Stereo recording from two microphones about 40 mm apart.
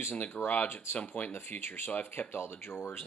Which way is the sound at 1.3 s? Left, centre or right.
Left.